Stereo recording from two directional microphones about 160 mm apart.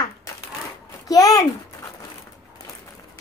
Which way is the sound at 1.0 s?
20° left (ahead or behind).